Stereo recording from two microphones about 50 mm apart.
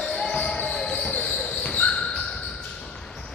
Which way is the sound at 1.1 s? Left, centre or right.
Left.